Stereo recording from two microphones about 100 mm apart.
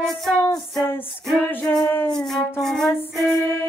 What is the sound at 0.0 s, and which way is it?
Music, centre (ahead or behind).